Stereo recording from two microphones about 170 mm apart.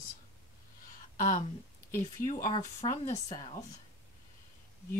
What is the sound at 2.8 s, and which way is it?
Speech, 40° left (ahead or behind).